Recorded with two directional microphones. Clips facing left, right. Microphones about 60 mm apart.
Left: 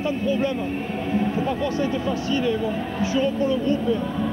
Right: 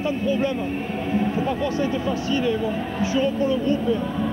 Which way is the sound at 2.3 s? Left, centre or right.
Centre.